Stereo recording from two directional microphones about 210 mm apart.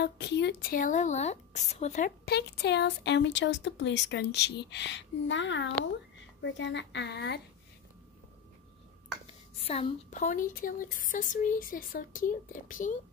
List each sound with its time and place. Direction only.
0.0 s a woman's voice: 50° left (ahead or behind)
9.6 s speech: 30° left (ahead or behind)